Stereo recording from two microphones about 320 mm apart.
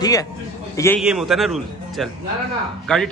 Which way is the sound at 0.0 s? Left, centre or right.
Centre.